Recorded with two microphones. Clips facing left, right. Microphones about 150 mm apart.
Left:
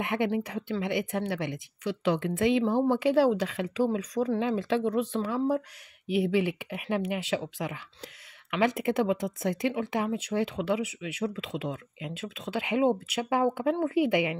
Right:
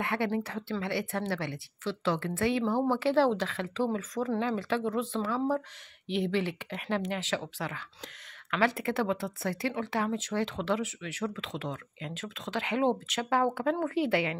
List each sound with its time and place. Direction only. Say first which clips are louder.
0.0 s speech: left 2 dB; 15° left (ahead or behind)